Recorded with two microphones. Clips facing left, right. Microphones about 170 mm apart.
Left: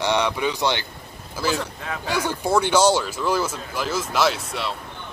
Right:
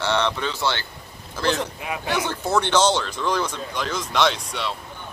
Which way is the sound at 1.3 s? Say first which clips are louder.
Right 1 dB; 5° left (ahead or behind).